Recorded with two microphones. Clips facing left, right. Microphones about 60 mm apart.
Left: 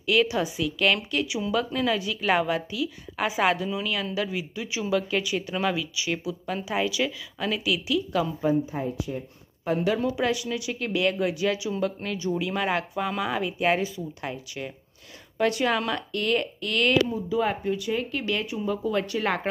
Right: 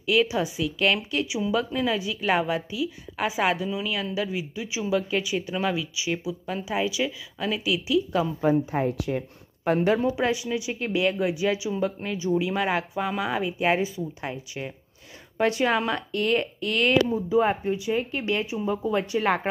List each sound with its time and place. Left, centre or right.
0.0 s a woman's voice: centre
8.4 s a woman's voice: right
8.8 s speech: right
9.9 s a woman's voice: right